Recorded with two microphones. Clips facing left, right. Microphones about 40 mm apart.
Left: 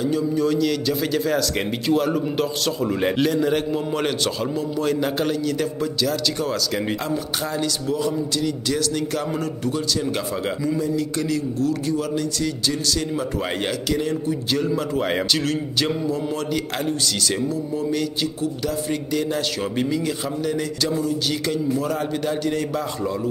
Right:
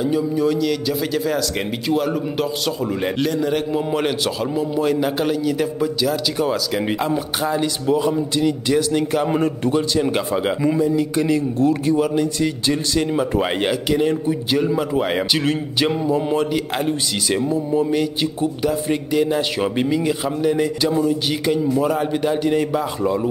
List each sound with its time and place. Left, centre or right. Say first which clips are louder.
0.0 s a man's voice: right 2 dB; centre
15.4 s speech: right 3 dB; right